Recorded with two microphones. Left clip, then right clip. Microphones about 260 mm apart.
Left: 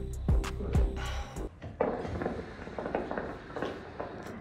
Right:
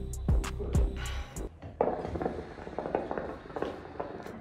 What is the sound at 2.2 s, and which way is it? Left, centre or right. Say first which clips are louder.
Vehicle: right 1 dB; right.